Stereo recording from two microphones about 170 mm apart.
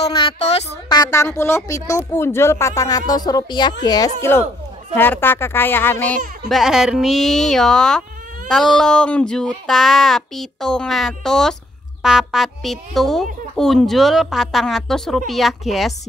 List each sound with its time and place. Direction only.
0.0 s a woman's voice: 30° left (ahead or behind)
0.8 s a woman's voice: 25° left (ahead or behind)
4.9 s speech: 10° left (ahead or behind)